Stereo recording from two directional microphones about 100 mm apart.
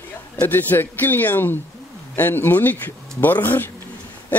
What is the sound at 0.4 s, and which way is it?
A man's voice, 20° left (ahead or behind).